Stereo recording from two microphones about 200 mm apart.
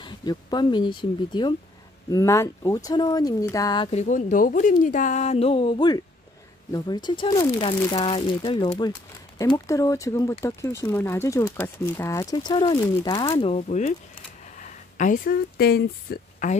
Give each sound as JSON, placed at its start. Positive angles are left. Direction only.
{"t": 0.0, "sound": "speech", "side_deg": 20}
{"t": 3.9, "sound": "speech", "side_deg": 35}